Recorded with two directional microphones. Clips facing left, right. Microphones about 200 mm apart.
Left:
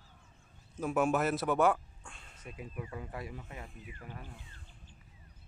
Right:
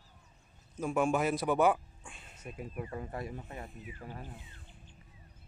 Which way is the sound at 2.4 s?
45° right (ahead or behind).